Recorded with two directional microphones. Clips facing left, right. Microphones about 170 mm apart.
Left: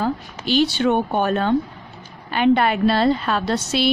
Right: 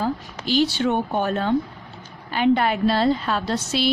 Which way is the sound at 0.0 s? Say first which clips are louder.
Left 2 dB; 65° left (ahead or behind).